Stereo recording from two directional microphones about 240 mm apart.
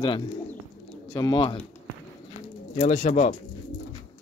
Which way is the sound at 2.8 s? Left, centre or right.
Left.